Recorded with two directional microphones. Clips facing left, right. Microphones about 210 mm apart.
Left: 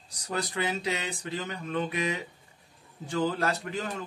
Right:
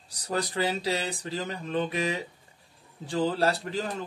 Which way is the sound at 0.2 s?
35° right (ahead or behind).